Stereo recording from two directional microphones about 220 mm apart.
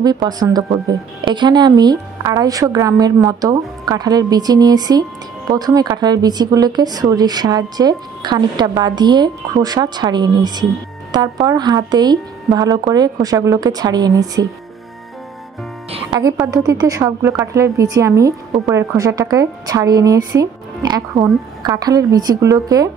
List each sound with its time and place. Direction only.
0.0 s a woman's voice: 20° right (ahead or behind)
16.1 s a woman's voice: 15° right (ahead or behind)